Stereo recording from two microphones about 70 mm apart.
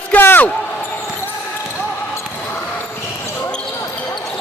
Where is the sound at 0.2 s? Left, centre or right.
Left.